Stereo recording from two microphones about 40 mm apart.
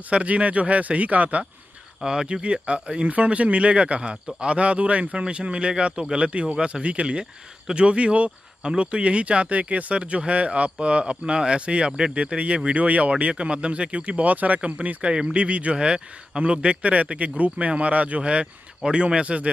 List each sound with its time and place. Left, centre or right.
0.1 s speech: right
2.0 s speech: right
3.1 s speech: right
16.8 s speech: right
18.2 s speech: right